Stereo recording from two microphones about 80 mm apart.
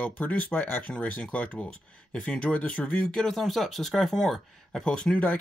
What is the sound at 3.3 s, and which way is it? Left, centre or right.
Speech, centre.